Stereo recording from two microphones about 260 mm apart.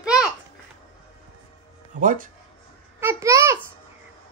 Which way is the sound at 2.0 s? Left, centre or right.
Right.